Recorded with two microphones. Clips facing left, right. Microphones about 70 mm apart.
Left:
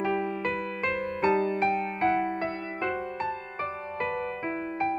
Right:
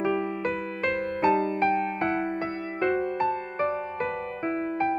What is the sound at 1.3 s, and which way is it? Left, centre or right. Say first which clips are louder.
Music: even; right.